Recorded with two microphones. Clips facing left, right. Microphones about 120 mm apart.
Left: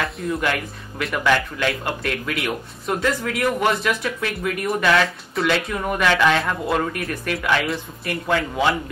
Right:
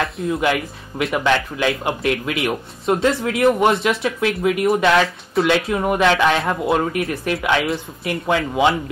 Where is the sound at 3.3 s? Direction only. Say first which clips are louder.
Right 6 dB; 25° right (ahead or behind).